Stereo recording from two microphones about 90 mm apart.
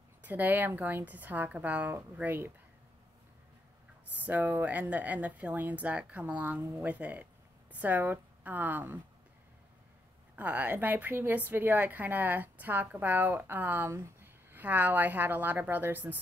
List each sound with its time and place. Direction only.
0.2 s a woman's voice: 20° right (ahead or behind)
4.1 s a woman's voice: 20° right (ahead or behind)
10.3 s a woman's voice: 20° right (ahead or behind)